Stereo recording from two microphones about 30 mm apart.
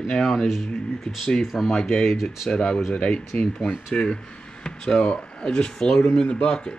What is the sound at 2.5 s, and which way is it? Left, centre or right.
Speech, left.